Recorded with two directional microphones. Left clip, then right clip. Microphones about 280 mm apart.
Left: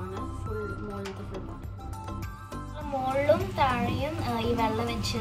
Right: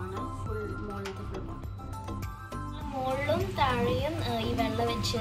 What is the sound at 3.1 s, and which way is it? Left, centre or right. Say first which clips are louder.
Speech: left 5 dB; centre.